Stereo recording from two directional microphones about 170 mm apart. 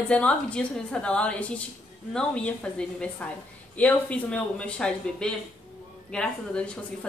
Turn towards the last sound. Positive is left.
turn(degrees=5)  # may be behind; listen again after turning